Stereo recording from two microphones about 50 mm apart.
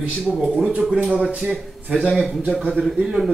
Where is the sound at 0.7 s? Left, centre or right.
Centre.